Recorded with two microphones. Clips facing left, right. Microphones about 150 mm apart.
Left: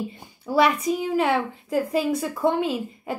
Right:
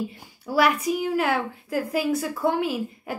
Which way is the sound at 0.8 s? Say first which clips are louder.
Left 1 dB; 5° right (ahead or behind).